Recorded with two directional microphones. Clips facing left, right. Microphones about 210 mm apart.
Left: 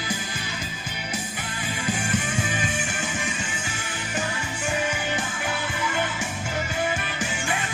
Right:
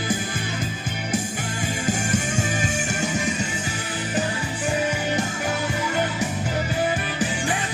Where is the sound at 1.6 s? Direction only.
45° right (ahead or behind).